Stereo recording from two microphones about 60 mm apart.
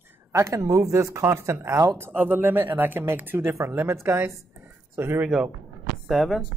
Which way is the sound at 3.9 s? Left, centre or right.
Right.